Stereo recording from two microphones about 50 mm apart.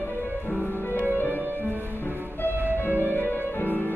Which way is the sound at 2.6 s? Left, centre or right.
Right.